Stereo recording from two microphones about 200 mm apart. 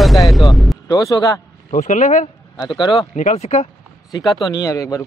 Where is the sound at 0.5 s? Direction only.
Centre (ahead or behind).